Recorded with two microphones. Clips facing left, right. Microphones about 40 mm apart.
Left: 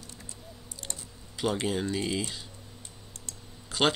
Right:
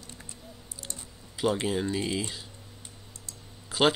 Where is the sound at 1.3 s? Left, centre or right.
Centre.